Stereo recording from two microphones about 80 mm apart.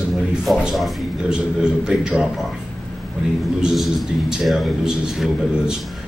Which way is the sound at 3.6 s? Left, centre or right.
Centre.